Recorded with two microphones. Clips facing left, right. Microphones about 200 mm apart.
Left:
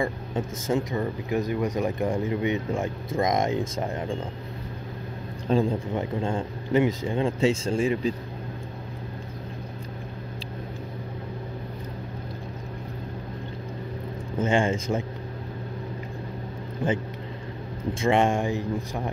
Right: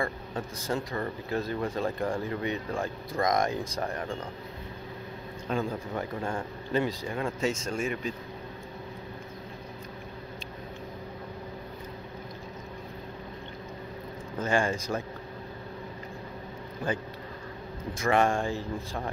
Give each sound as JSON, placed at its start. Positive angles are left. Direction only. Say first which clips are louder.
{"t": 0.0, "sound": "speech", "louder": "left 5 dB", "side_deg": 20}
{"t": 5.5, "sound": "speech", "louder": "left 7 dB", "side_deg": 30}
{"t": 14.4, "sound": "speech", "louder": "left 4 dB", "side_deg": 25}
{"t": 17.9, "sound": "speech", "louder": "left 3 dB", "side_deg": 25}